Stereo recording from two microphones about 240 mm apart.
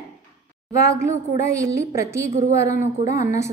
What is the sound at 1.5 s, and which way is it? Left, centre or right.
A woman's voice, centre.